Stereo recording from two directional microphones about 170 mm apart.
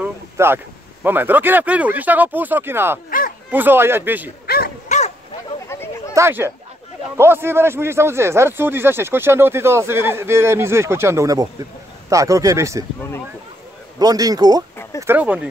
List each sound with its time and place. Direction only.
0.0 s a sound: 15° right (ahead or behind)
1.0 s speech: 10° right (ahead or behind)
3.1 s a sound: 55° left (ahead or behind)
3.5 s speech: 10° right (ahead or behind)
4.5 s dog: 65° left (ahead or behind)
4.8 s dog: 45° left (ahead or behind)
5.7 s a sound: 15° left (ahead or behind)
6.1 s speech: 15° right (ahead or behind)
13.9 s speech: 20° right (ahead or behind)
15.0 s speech: 10° right (ahead or behind)